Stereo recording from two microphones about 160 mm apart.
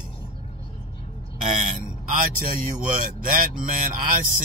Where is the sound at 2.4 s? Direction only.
60° right (ahead or behind).